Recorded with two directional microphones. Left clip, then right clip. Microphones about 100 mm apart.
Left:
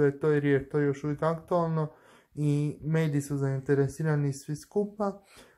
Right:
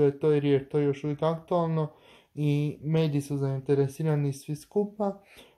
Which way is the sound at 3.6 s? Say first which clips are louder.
Right 1 dB; 15° right (ahead or behind).